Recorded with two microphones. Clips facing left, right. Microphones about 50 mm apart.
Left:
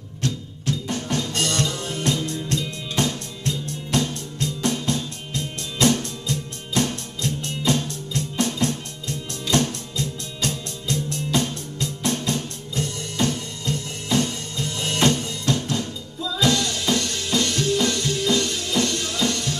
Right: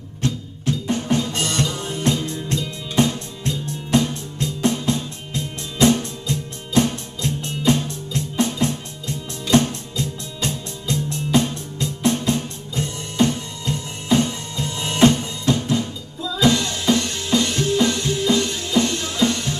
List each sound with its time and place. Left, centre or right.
0.2 s music: right